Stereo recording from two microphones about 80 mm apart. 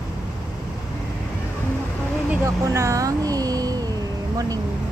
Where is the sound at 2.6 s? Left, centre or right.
Right.